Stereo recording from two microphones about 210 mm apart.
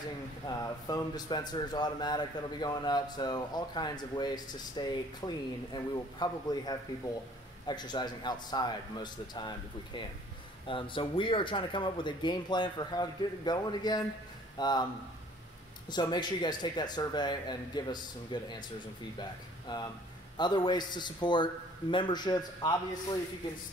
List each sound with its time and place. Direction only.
0.5 s a man's voice: 20° left (ahead or behind)
15.9 s a man's voice: 20° left (ahead or behind)
19.7 s a man's voice: 20° left (ahead or behind)